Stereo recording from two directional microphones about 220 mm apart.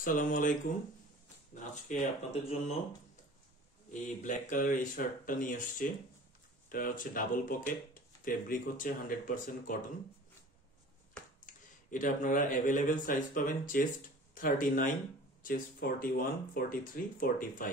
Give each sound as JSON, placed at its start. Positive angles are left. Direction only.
{"t": 0.0, "sound": "speech", "side_deg": 35}
{"t": 4.2, "sound": "speech", "side_deg": 35}
{"t": 11.4, "sound": "speech", "side_deg": 35}